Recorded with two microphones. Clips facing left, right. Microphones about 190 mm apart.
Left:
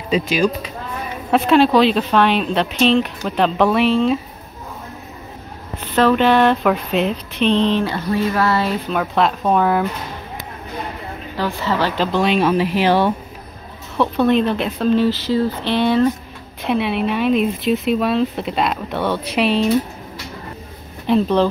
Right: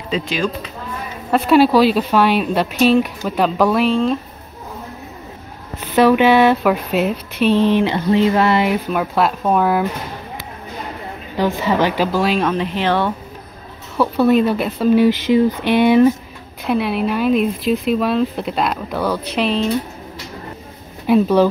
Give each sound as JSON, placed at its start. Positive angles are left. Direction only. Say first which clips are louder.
{"t": 1.3, "sound": "speech", "louder": "right 1 dB", "side_deg": -5}
{"t": 5.9, "sound": "speech", "louder": "right 2 dB", "side_deg": -10}
{"t": 7.8, "sound": "speech", "louder": "right 5 dB", "side_deg": -20}
{"t": 11.3, "sound": "speech", "louder": "right 4 dB", "side_deg": -15}
{"t": 13.9, "sound": "speech", "louder": "right 2 dB", "side_deg": -5}
{"t": 16.6, "sound": "speech", "louder": "right 1 dB", "side_deg": 0}
{"t": 21.1, "sound": "speech", "louder": "right 3 dB", "side_deg": -10}